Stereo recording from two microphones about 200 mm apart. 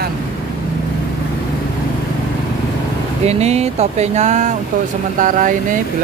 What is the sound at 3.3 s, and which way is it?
Speech, 35° right (ahead or behind).